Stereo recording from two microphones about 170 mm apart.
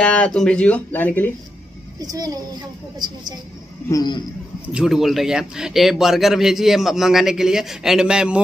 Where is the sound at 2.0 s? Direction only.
20° right (ahead or behind).